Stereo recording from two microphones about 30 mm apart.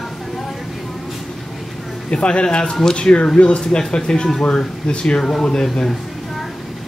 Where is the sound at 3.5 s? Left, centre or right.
Left.